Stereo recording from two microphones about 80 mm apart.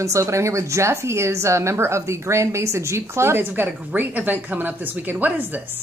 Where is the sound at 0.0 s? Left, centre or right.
Right.